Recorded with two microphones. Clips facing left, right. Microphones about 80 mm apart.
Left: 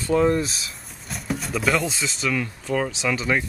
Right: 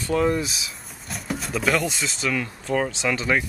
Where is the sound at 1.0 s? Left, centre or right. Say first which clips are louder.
Left 1 dB; centre.